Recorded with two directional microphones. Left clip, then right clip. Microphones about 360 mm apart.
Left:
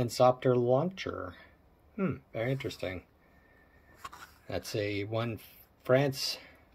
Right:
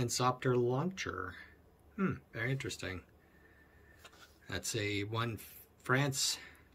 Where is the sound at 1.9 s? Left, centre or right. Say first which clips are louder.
Left 4 dB; centre.